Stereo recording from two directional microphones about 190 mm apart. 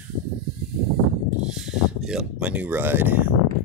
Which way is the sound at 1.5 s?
Centre (ahead or behind).